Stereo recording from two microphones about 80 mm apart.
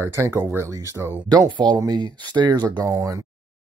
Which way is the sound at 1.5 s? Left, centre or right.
Right.